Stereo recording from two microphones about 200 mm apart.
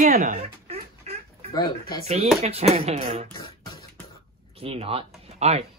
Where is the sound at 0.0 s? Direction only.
45° right (ahead or behind).